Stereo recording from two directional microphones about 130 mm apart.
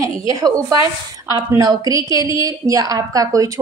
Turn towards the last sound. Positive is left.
turn(degrees=-25)  # may be behind; listen again after turning